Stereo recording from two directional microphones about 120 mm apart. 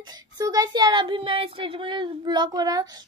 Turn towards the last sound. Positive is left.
turn(degrees=-30)  # may be behind; listen again after turning